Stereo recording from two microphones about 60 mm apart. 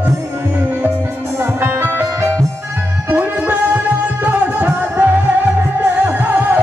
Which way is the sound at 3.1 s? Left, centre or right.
Right.